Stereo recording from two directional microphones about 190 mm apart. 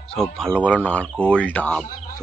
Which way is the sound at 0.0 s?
5° left (ahead or behind).